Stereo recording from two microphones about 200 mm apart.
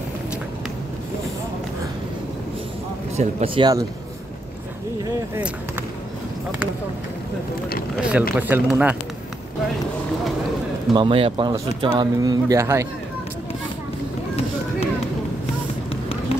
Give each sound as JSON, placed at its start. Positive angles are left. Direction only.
{"t": 3.2, "sound": "speech", "side_deg": -30}
{"t": 5.3, "sound": "speech", "side_deg": -10}
{"t": 8.0, "sound": "speech", "side_deg": -5}
{"t": 10.9, "sound": "speech", "side_deg": -25}